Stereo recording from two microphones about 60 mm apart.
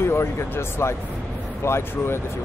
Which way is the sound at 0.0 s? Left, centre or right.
Left.